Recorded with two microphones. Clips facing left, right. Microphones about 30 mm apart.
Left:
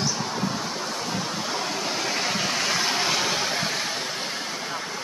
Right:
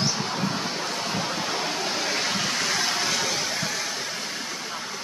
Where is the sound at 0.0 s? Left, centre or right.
Centre.